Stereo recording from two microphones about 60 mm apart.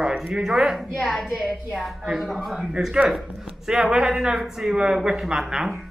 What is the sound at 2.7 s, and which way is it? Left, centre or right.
Speech, centre.